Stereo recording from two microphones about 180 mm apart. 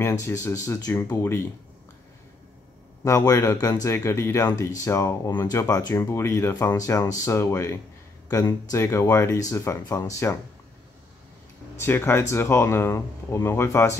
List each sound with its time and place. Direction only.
0.0 s speech: 15° left (ahead or behind)
3.0 s speech: 20° left (ahead or behind)
11.7 s speech: 10° left (ahead or behind)